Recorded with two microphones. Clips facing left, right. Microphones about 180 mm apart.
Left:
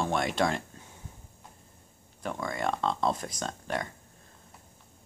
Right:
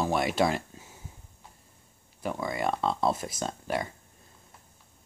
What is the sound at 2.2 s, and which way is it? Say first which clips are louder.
Speech: right 2 dB; 5° right (ahead or behind).